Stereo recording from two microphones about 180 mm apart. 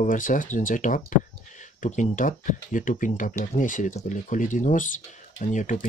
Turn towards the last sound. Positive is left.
turn(degrees=45)  # may be behind; listen again after turning